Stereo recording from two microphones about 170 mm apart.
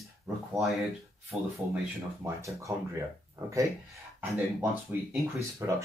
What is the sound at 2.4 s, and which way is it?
Speech, 20° right (ahead or behind).